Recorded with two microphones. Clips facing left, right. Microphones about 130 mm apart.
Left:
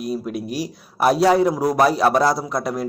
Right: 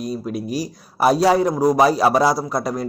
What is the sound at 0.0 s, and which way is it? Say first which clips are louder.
A man's voice: even; centre (ahead or behind).